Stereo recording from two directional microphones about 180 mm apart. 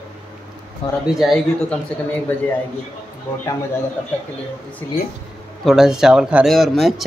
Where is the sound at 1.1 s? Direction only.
Centre (ahead or behind).